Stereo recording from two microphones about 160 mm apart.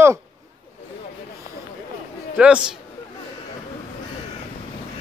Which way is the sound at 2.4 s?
5° right (ahead or behind).